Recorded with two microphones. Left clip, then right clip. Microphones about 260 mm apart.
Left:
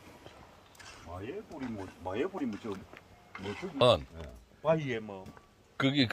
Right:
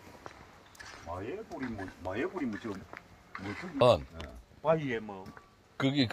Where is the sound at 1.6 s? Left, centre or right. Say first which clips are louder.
Right 1 dB; left.